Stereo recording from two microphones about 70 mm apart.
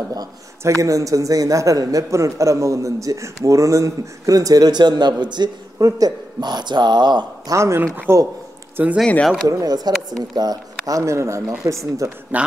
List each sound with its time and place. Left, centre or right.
0.7 s a man's voice: right
5.9 s speech: right
7.5 s speech: right
9.5 s speech: right
11.0 s a man's voice: right
12.3 s speech: right